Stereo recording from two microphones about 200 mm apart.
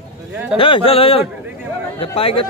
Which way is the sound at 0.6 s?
25° left (ahead or behind).